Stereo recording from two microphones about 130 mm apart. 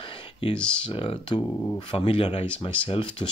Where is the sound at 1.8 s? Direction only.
45° left (ahead or behind).